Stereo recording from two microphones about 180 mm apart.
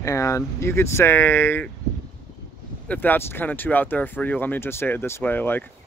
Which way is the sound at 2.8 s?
10° left (ahead or behind).